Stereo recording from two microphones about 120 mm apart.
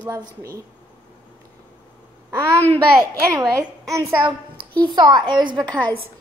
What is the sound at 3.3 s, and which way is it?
Speech, 30° right (ahead or behind).